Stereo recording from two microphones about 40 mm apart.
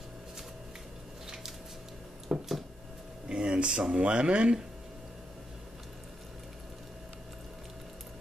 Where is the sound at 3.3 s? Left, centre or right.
Right.